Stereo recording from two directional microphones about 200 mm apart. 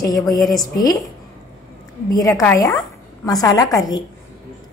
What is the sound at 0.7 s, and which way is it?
Speech, 20° left (ahead or behind).